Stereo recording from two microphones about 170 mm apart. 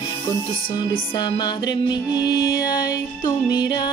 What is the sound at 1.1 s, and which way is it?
Music, 25° left (ahead or behind).